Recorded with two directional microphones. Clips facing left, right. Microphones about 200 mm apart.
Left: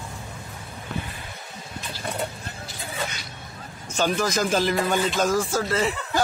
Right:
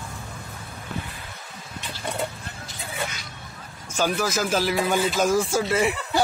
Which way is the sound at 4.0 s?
5° right (ahead or behind).